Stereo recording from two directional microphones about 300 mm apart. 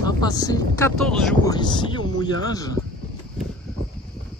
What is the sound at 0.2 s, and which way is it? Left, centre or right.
Speech, centre.